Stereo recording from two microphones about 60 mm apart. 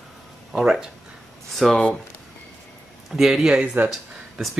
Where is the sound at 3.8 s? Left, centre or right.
Right.